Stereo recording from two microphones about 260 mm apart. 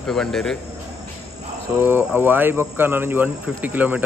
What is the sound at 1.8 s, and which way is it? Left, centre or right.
Speech, centre.